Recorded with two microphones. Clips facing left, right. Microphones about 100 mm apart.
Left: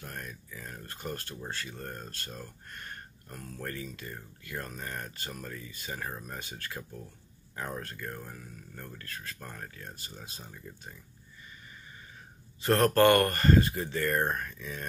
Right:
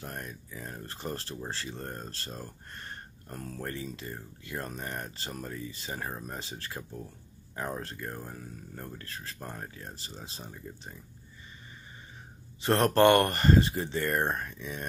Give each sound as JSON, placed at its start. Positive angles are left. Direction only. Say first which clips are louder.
{"t": 0.0, "sound": "a sound", "louder": "right 2 dB", "side_deg": -25}
{"t": 1.5, "sound": "speech", "louder": "even", "side_deg": -25}
{"t": 3.6, "sound": "speech", "louder": "even", "side_deg": -25}
{"t": 12.6, "sound": "speech", "louder": "even", "side_deg": -25}